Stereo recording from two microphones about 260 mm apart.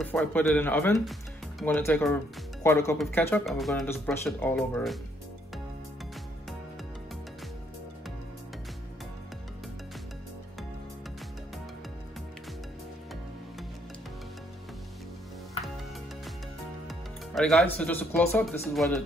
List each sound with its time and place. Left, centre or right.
0.0 s speech: centre
16.8 s speech: centre